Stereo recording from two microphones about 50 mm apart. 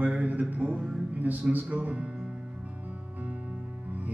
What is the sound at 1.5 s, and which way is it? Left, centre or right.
Music, right.